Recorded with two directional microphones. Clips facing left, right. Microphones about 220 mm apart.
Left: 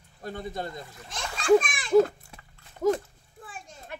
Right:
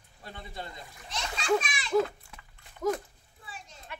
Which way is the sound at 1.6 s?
50° left (ahead or behind).